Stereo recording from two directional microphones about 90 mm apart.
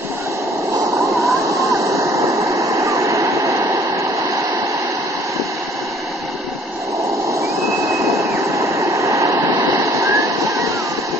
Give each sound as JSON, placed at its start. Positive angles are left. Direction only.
{"t": 1.4, "sound": "vehicle", "side_deg": -35}
{"t": 7.9, "sound": "vehicle", "side_deg": -35}